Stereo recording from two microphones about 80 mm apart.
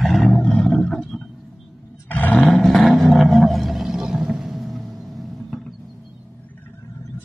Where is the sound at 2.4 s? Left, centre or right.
Centre.